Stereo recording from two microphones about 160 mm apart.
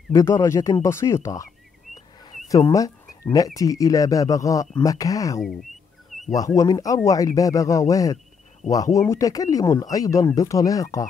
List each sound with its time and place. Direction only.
0.1 s speech: 20° left (ahead or behind)
5.4 s speech: centre (ahead or behind)
6.3 s speech: 20° left (ahead or behind)